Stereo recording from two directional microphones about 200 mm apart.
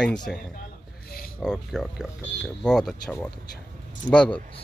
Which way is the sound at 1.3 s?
5° left (ahead or behind).